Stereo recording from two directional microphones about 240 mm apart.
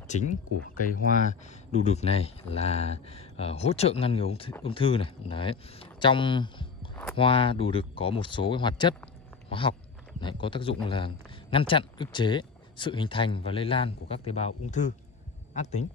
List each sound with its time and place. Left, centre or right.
0.1 s a man's voice: left